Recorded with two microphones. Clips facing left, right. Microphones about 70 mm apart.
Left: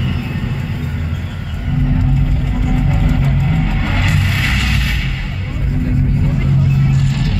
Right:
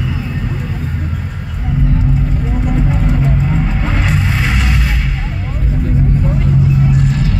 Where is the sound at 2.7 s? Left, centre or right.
Centre.